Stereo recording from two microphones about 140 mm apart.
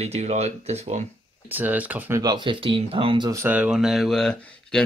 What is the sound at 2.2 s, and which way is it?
Speech, 30° right (ahead or behind).